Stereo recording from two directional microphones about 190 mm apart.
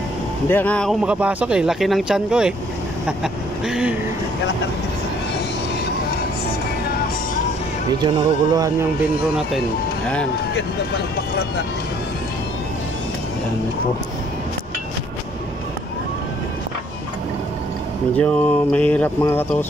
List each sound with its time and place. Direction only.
0.5 s speech: 10° left (ahead or behind)
3.6 s speech: 5° right (ahead or behind)
8.0 s speech: 25° right (ahead or behind)
18.1 s speech: 5° left (ahead or behind)